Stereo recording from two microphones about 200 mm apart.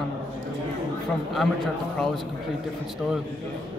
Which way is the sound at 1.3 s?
Centre (ahead or behind).